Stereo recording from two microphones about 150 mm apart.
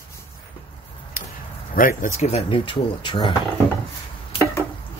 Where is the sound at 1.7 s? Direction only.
70° left (ahead or behind).